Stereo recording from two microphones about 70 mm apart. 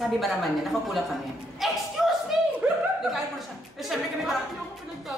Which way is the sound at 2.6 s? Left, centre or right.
Centre.